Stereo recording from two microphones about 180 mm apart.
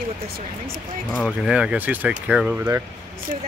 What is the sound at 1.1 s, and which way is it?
Speech, 5° right (ahead or behind).